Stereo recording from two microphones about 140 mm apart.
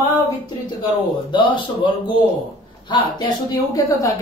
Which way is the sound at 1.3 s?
35° left (ahead or behind).